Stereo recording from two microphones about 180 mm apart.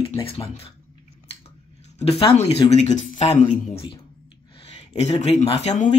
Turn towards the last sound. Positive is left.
turn(degrees=40)  # may be behind; listen again after turning